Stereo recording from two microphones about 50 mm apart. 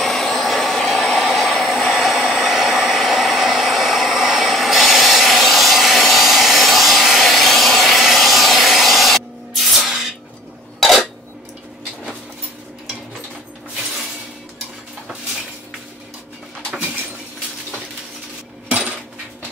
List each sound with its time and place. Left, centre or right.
0.0 s vacuum cleaner: centre
10.8 s dishes: centre
18.7 s cutlery: right